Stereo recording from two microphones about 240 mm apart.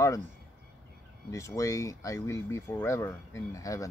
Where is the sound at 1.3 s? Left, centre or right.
Centre.